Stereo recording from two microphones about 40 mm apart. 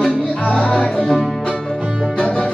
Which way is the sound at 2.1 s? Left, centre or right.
Left.